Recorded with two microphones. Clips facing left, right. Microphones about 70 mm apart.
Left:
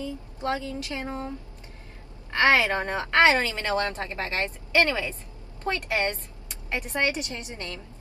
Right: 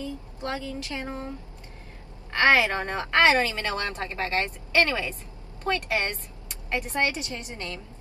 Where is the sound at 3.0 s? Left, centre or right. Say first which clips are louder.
Even; right.